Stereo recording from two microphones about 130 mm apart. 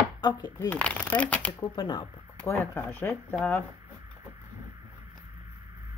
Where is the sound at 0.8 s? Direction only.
10° left (ahead or behind).